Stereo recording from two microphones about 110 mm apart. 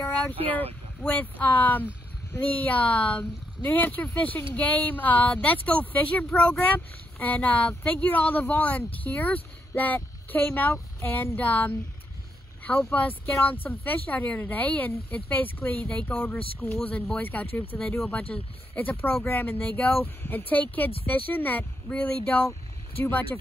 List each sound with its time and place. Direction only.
1.0 s speech: 15° left (ahead or behind)